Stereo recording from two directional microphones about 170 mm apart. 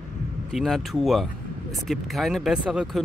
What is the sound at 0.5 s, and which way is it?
Speech, centre (ahead or behind).